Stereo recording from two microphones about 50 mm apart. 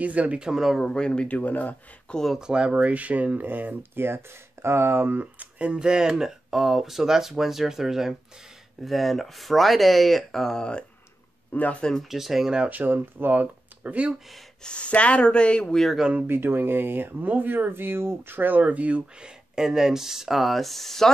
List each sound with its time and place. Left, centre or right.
0.0 s speech: right
0.4 s speech: centre
0.7 s speech: centre; by 1.8 s left
2.3 s speech: centre
11.5 s speech: left
12.0 s speech: centre
12.6 s speech: right
14.6 s speech: left
16.3 s speech: right; by 21.1 s centre